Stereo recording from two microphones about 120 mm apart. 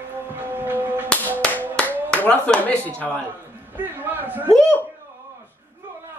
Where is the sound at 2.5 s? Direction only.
15° left (ahead or behind).